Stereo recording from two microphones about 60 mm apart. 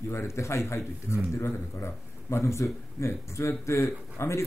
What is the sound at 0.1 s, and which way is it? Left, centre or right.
A man's voice, left.